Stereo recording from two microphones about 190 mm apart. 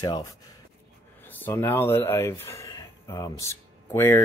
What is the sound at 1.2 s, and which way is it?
Speech, 10° left (ahead or behind).